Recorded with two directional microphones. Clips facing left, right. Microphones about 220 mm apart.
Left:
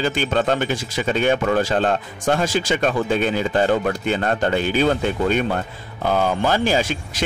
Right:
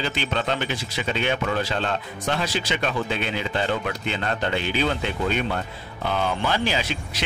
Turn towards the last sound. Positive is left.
turn(degrees=45)  # may be behind; listen again after turning